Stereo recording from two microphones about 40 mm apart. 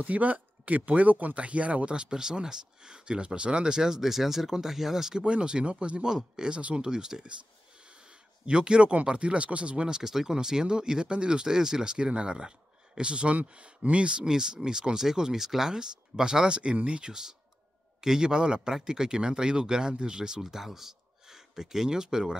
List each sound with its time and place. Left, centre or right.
0.0 s speech: right; by 5.2 s centre
5.2 s speech: right
7.8 s a sound: right
9.0 s speech: right; by 15.7 s centre
15.7 s speech: centre
17.1 s speech: centre